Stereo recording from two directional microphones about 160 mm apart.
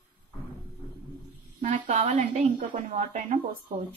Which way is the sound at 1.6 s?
50° right (ahead or behind).